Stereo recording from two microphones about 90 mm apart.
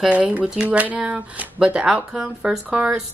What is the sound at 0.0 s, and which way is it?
Speech, 15° right (ahead or behind).